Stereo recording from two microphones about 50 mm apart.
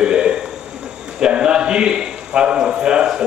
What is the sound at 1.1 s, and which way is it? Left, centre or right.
A man's voice, centre.